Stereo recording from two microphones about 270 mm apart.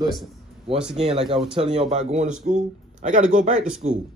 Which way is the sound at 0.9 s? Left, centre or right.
Right.